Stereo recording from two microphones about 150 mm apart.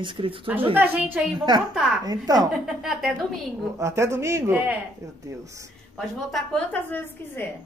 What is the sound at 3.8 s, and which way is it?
Speech, 20° right (ahead or behind).